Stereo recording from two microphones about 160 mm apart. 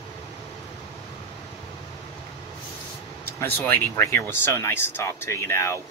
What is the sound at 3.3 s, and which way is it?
Speech, 10° left (ahead or behind).